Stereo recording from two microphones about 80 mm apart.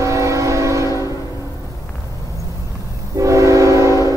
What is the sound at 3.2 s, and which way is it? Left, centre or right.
Train, right.